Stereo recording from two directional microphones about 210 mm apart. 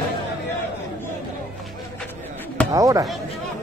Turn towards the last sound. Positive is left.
turn(degrees=-15)  # may be behind; listen again after turning